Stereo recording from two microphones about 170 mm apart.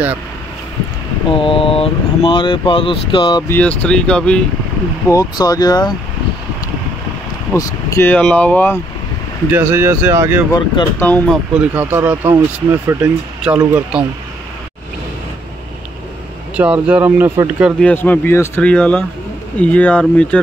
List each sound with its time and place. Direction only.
1.3 s speech: 30° left (ahead or behind)
3.4 s speech: 10° left (ahead or behind)
5.0 s speech: 20° left (ahead or behind)
7.5 s speech: 15° left (ahead or behind)
9.5 s speech: 15° right (ahead or behind)
10.5 s speech: 20° left (ahead or behind)
11.1 s speech: 10° left (ahead or behind)
11.5 s speech: 10° right (ahead or behind)
16.5 s speech: 5° right (ahead or behind)
17.7 s speech: 10° left (ahead or behind)